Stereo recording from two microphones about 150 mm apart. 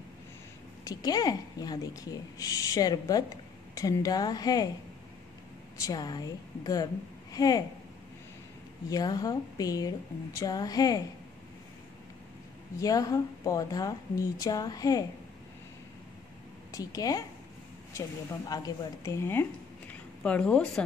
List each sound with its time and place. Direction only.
0.8 s speech: 25° left (ahead or behind)
5.9 s speech: 25° left (ahead or behind)
8.9 s speech: 25° left (ahead or behind)
12.7 s speech: 25° left (ahead or behind)
16.7 s speech: 25° left (ahead or behind)
18.5 s a woman's voice: 25° left (ahead or behind); by 20.8 s 5° left (ahead or behind)